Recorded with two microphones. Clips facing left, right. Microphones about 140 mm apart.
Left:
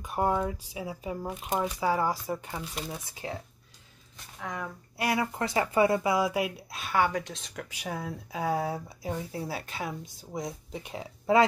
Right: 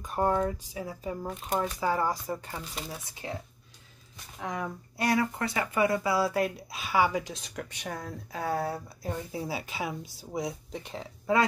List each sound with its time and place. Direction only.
0.0 s a woman's voice: 10° left (ahead or behind)
4.4 s speech: 15° right (ahead or behind)
4.9 s speech: 10° left (ahead or behind)
5.4 s a woman's voice: 25° left (ahead or behind); by 9.3 s 10° left (ahead or behind)
9.3 s speech: centre (ahead or behind)